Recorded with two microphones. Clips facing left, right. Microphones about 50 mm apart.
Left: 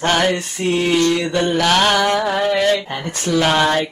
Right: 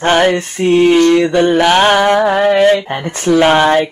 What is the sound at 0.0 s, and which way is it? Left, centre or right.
Mantra, right.